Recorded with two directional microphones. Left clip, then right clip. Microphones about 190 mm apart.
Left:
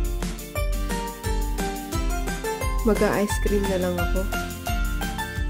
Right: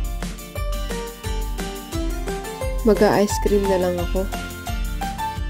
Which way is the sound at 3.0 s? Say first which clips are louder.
Right 6 dB; 15° right (ahead or behind).